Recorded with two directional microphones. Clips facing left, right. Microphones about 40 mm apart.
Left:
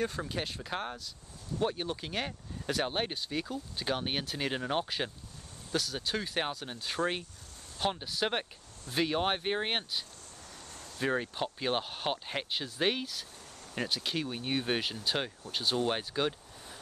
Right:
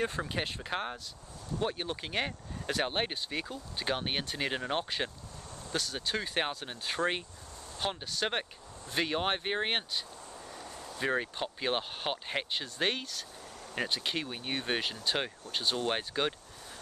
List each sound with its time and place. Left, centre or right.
0.0 s speech: right
7.8 s speech: centre
13.7 s speech: centre